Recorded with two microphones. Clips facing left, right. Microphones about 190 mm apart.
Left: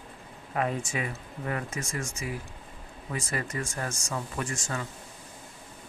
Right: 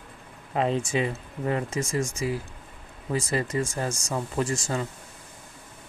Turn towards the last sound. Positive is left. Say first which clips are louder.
# right 6 dB
turn(degrees=-30)  # may be behind; listen again after turning